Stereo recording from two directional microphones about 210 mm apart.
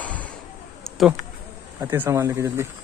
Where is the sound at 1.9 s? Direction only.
10° right (ahead or behind).